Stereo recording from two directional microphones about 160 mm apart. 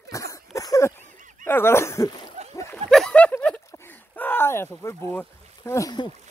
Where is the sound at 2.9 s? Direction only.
5° left (ahead or behind).